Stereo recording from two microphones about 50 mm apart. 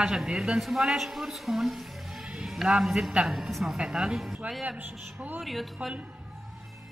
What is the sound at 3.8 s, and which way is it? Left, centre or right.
Speech, centre.